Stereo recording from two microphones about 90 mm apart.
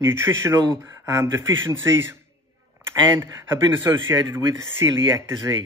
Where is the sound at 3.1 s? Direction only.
30° right (ahead or behind).